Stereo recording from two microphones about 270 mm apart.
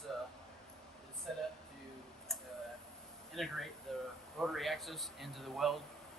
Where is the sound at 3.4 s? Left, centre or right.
Centre.